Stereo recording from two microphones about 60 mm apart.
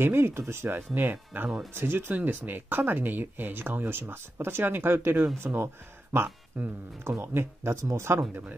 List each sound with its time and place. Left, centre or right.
0.0 s speech: right
1.3 s speech: right
6.5 s speech: right
7.1 s speech: right
8.3 s speech: right